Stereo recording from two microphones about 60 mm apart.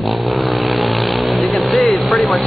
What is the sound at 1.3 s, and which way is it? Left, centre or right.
Vehicle, centre.